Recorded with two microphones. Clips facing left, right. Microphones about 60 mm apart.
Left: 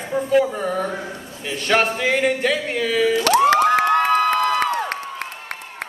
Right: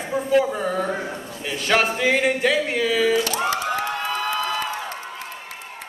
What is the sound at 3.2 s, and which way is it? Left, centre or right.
Cheering, left.